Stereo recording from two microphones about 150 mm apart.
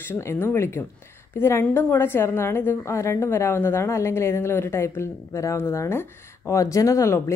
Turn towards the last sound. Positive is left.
turn(degrees=20)  # may be behind; listen again after turning